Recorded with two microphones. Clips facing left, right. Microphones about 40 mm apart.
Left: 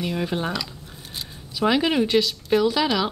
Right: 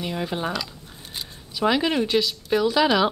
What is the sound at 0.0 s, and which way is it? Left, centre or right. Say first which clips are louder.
A woman's voice: left 1 dB; centre.